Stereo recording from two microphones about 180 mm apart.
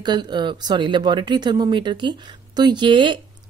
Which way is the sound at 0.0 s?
25° right (ahead or behind).